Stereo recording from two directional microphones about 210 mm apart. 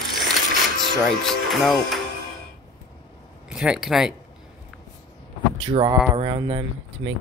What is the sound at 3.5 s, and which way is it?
Mechanisms, 5° right (ahead or behind).